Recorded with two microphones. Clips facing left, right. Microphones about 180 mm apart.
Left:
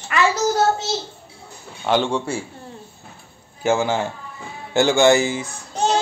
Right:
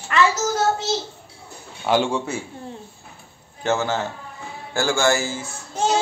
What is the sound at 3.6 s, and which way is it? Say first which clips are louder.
Music: left 3 dB; 10° left (ahead or behind).